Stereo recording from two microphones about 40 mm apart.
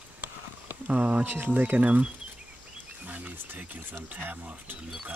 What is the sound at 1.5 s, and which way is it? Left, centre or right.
Speech, right.